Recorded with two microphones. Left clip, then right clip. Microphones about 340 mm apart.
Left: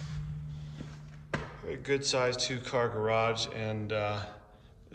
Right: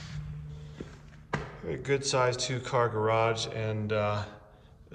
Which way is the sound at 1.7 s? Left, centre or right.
Centre.